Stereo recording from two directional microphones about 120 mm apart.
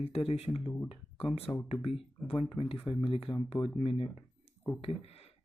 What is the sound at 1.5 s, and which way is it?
Speech, 10° left (ahead or behind).